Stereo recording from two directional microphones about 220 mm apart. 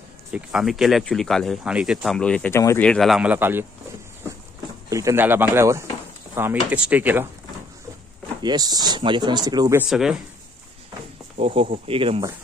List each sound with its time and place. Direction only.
0.3 s speech: 5° right (ahead or behind)
4.8 s speech: 15° right (ahead or behind)
8.4 s speech: 20° right (ahead or behind)
9.8 s speech: centre (ahead or behind)
11.3 s speech: 25° right (ahead or behind)